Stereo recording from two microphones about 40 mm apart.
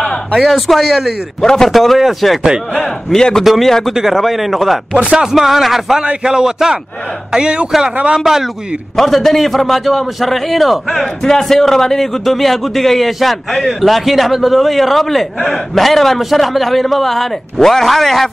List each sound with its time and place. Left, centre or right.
0.5 s a man's voice: centre
1.4 s a man's voice: centre
1.7 s a man's voice: centre
2.8 s a man's voice: centre
3.4 s a man's voice: centre
4.9 s a man's voice: right
5.2 s a man's voice: centre
6.2 s a man's voice: centre
8.2 s a man's voice: centre
8.9 s a man's voice: centre